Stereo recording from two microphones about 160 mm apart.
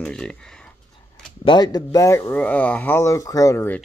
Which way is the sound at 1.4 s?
25° left (ahead or behind).